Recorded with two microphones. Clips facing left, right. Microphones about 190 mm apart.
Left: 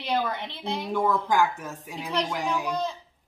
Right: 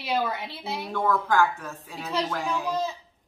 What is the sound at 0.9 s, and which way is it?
A man's voice, 15° left (ahead or behind).